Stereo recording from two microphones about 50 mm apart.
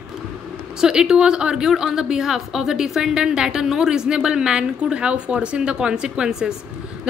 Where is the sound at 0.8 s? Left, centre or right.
Centre.